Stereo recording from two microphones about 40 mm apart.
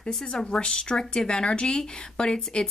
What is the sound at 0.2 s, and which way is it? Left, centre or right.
Speech, centre.